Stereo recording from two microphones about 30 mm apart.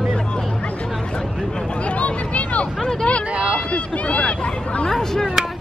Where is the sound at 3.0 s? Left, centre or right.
Left.